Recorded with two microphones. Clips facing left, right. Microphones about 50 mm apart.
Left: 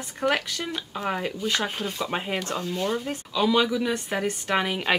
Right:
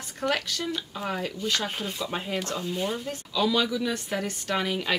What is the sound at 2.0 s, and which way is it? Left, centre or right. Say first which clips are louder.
Speech: left 3 dB; left.